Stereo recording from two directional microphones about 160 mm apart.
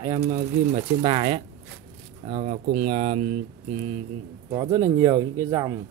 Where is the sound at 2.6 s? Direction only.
75° right (ahead or behind).